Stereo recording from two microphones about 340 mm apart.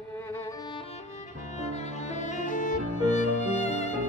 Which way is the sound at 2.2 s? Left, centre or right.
Left.